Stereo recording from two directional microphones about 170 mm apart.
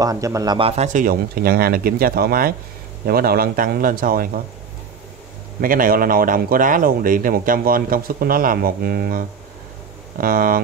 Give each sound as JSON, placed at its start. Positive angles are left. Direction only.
{"t": 0.0, "sound": "speech", "side_deg": -20}
{"t": 0.6, "sound": "speech", "side_deg": -35}
{"t": 5.6, "sound": "speech", "side_deg": -55}